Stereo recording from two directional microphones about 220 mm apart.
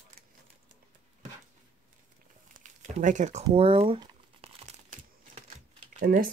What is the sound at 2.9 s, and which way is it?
Speech, 35° right (ahead or behind).